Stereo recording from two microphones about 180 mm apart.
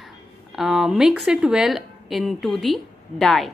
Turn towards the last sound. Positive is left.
turn(degrees=0)  # may be behind; listen again after turning